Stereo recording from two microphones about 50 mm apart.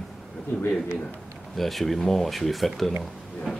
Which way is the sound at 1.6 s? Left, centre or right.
Centre.